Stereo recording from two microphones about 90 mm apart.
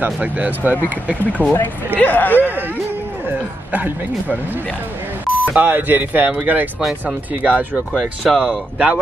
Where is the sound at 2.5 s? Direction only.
20° right (ahead or behind).